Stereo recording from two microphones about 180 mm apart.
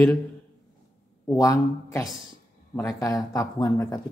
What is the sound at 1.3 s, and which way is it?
Speech, 20° left (ahead or behind).